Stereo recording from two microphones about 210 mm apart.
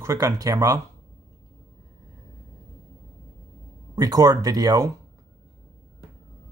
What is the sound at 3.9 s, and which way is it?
Speech, 15° right (ahead or behind).